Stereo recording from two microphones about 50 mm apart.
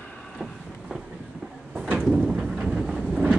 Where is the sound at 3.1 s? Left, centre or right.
Centre.